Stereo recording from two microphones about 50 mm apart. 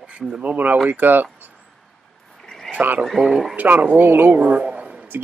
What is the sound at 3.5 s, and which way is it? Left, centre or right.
Speech, right.